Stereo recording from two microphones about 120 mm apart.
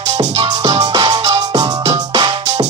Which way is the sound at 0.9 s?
35° right (ahead or behind).